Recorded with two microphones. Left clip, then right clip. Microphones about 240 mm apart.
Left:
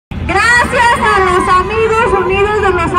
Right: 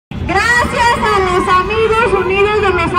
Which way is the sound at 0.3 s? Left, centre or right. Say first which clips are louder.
Left 3 dB; centre.